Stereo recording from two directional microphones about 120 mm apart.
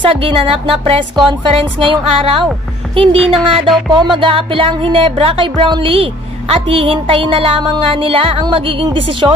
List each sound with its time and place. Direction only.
0.0 s speech: 45° right (ahead or behind)